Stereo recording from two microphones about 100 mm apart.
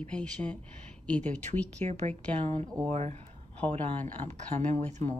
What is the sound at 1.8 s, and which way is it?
Speech, 90° right.